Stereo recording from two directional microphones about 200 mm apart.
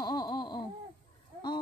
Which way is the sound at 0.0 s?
20° left (ahead or behind).